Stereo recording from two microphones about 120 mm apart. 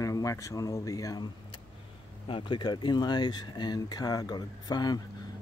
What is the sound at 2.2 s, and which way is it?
Speech, 45° left (ahead or behind).